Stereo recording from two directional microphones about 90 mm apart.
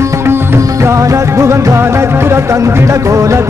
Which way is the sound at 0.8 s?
35° right (ahead or behind).